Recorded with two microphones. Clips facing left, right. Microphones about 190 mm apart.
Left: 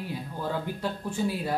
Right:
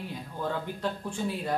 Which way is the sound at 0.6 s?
5° left (ahead or behind).